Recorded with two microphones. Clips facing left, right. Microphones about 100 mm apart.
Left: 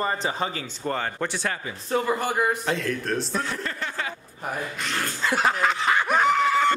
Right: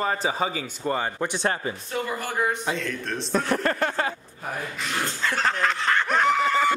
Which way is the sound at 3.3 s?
55° right (ahead or behind).